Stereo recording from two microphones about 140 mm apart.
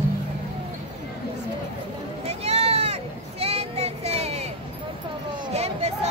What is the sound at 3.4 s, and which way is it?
Child singing, 50° right (ahead or behind).